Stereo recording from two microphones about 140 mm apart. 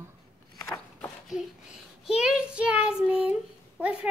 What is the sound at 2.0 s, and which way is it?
Child singing, 5° right (ahead or behind).